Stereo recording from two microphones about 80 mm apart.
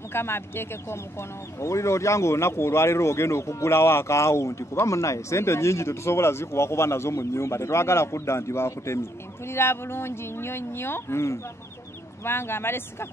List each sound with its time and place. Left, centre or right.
0.1 s speech: left